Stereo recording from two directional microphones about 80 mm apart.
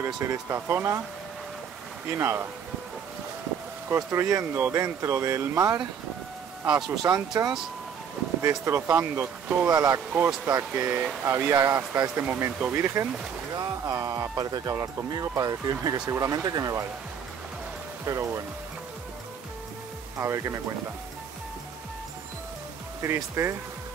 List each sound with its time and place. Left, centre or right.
0.0 s speech: right
2.0 s speech: right
3.9 s speech: right
7.0 s speech: right
8.4 s speech: right
9.7 s speech: right
9.9 s speech: right
13.6 s speech: right
18.0 s speech: right
20.2 s speech: right
23.4 s speech: right